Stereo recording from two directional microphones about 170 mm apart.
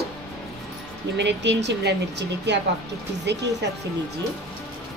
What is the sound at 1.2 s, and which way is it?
Speech, 90° right.